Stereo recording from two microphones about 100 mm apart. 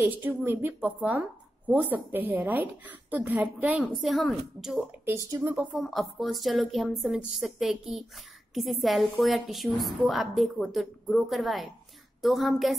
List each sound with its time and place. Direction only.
0.0 s a woman's voice: 20° right (ahead or behind)
4.0 s a woman's voice: centre (ahead or behind)
5.0 s a woman's voice: 30° right (ahead or behind)
5.5 s a woman's voice: 15° right (ahead or behind)
5.8 s a woman's voice: centre (ahead or behind)